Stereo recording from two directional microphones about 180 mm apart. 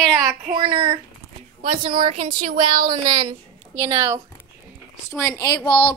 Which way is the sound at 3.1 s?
25° right (ahead or behind).